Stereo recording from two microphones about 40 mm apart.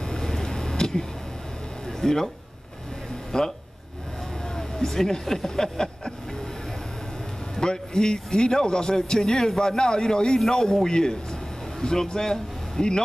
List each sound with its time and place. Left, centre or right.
0.0 s vehicle: centre
1.9 s a sound: centre
3.3 s speech: centre
4.6 s speech: centre
7.6 s a man's voice: centre